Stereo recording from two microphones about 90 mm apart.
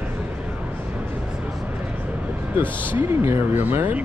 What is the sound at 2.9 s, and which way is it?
Speech, 25° right (ahead or behind).